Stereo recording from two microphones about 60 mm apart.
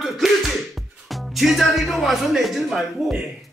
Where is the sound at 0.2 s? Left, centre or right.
Centre.